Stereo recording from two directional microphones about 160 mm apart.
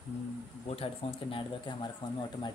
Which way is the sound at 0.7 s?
40° left (ahead or behind).